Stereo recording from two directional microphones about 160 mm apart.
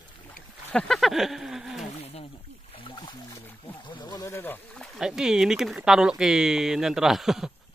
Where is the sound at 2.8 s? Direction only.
30° left (ahead or behind).